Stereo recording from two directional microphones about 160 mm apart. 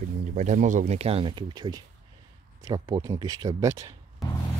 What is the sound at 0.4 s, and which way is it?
Speech, 50° right (ahead or behind).